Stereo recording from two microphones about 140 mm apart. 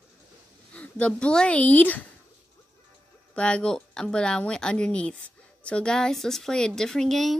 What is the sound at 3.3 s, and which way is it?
Speech, 5° left (ahead or behind).